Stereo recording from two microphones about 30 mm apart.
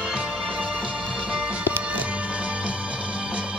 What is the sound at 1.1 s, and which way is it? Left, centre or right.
Music, right.